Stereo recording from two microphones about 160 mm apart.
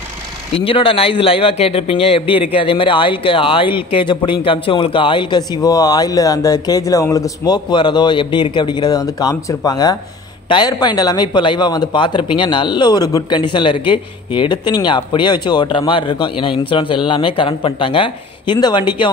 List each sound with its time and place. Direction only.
0.6 s a man's voice: 35° left (ahead or behind)